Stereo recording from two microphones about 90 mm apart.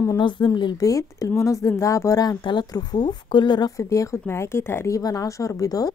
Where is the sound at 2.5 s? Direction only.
55° left (ahead or behind).